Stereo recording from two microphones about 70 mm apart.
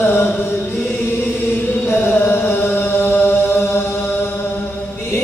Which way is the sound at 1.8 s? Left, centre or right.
Left.